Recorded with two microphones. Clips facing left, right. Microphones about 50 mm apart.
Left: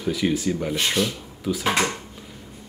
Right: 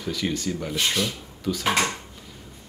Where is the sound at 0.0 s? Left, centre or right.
Centre.